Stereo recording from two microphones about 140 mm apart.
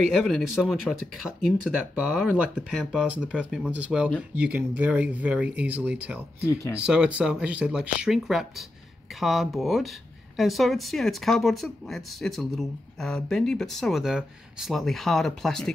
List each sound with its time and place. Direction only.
0.1 s speech: centre (ahead or behind)
6.4 s speech: 20° left (ahead or behind)
6.9 s speech: 5° right (ahead or behind)